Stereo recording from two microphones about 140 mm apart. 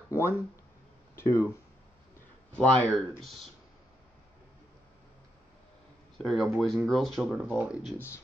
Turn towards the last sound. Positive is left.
turn(degrees=0)  # may be behind; listen again after turning